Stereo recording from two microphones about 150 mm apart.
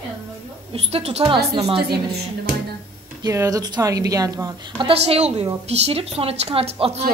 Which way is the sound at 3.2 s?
20° right (ahead or behind).